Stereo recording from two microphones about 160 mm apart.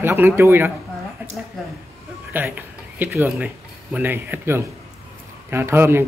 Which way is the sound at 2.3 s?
10° right (ahead or behind).